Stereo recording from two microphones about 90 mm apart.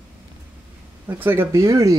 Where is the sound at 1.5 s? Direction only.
35° right (ahead or behind).